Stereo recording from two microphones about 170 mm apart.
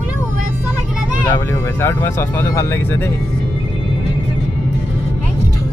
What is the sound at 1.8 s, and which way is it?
Speech, 15° left (ahead or behind).